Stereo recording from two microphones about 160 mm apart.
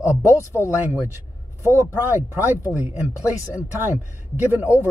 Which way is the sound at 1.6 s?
15° right (ahead or behind).